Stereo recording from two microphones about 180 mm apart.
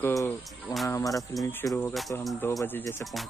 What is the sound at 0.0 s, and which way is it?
Speech, 20° left (ahead or behind).